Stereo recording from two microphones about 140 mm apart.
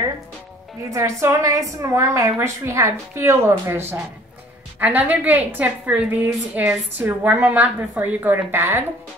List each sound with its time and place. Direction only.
0.8 s a woman's voice: 20° right (ahead or behind)